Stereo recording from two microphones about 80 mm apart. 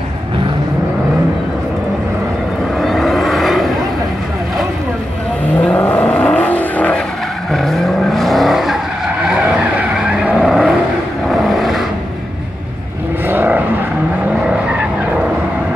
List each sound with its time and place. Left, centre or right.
2.8 s vehicle: centre
5.6 s vehicle: centre
7.5 s vehicle: centre
10.4 s vehicle: centre
13.3 s vehicle: right